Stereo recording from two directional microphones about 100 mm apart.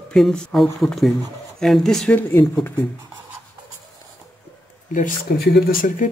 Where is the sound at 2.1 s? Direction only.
20° left (ahead or behind).